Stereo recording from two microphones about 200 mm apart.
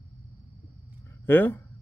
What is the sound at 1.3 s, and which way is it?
Speech, 10° left (ahead or behind).